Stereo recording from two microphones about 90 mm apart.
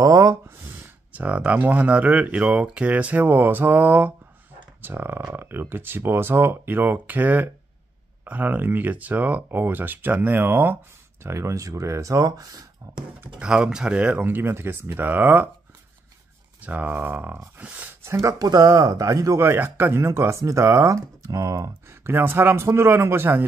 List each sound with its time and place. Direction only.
0.0 s a sound: 35° right (ahead or behind)
1.1 s speech: 15° right (ahead or behind); by 13.0 s 45° right (ahead or behind)
13.4 s speech: 10° right (ahead or behind)
16.6 s speech: 20° right (ahead or behind)
18.0 s speech: 30° right (ahead or behind)
18.4 s speech: 50° right (ahead or behind)
22.0 s speech: 25° right (ahead or behind)